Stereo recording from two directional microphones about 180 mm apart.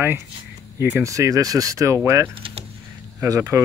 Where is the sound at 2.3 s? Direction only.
30° right (ahead or behind).